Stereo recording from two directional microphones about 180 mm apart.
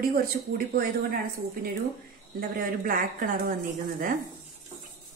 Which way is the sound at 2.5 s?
55° right (ahead or behind).